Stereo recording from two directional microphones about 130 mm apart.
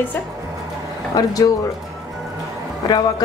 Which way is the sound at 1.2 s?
30° left (ahead or behind).